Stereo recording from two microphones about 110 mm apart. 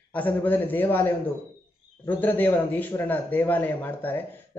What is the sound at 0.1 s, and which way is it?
A man's voice, 15° left (ahead or behind).